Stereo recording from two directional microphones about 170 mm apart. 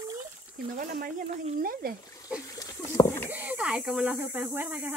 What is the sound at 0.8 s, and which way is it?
Snake, 55° right (ahead or behind).